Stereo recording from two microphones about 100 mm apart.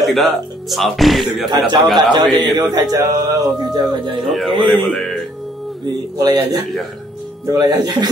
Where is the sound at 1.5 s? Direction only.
45° right (ahead or behind).